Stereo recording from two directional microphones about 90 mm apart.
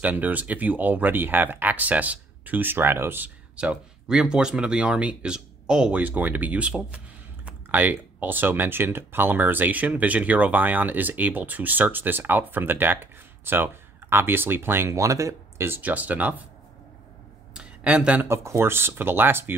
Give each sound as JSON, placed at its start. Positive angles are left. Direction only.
{"t": 0.0, "sound": "speech", "side_deg": -20}
{"t": 3.5, "sound": "speech", "side_deg": -10}
{"t": 17.6, "sound": "speech", "side_deg": -15}
{"t": 18.3, "sound": "speech", "side_deg": -30}